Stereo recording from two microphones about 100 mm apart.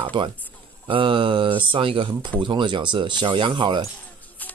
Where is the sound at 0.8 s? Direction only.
60° right (ahead or behind).